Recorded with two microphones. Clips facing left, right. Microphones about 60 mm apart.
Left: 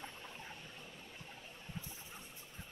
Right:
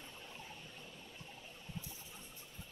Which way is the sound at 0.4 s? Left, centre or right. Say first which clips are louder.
Left 1 dB; left.